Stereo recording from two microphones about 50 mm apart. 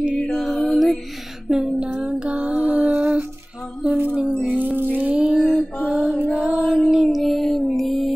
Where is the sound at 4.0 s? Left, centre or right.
Right.